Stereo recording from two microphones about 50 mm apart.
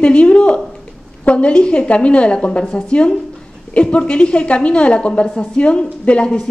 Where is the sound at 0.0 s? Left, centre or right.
Left.